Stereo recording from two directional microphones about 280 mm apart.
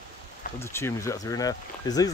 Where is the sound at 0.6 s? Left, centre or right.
Centre.